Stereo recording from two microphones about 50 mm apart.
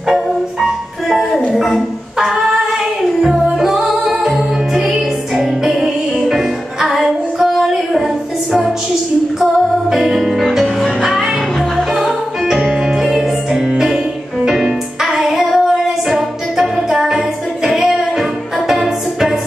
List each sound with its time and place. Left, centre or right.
0.1 s music: centre
1.5 s singing: centre
3.2 s music: centre
9.4 s music: centre